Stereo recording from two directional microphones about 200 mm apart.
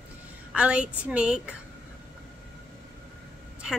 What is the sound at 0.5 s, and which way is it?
Speech, 5° right (ahead or behind).